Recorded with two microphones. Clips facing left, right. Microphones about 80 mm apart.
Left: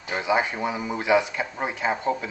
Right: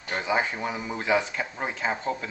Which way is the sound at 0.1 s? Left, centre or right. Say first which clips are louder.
Left 3 dB; centre.